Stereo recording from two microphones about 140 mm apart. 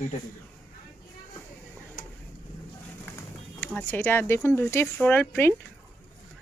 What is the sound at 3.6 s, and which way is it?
Speech, 15° left (ahead or behind).